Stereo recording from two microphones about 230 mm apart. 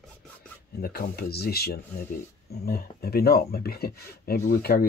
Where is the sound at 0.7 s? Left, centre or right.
Left.